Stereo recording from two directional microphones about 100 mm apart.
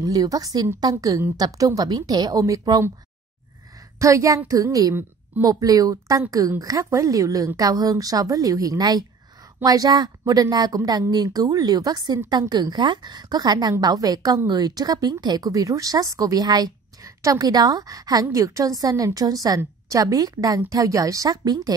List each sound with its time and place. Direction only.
0.0 s speech: 35° right (ahead or behind)
4.0 s a woman's voice: 30° right (ahead or behind)